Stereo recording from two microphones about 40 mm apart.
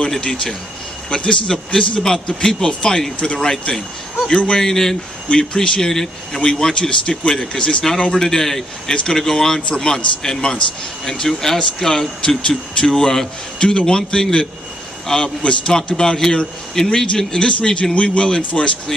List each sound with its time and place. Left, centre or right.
0.1 s speech: centre
6.7 s speech: left
8.3 s speech: centre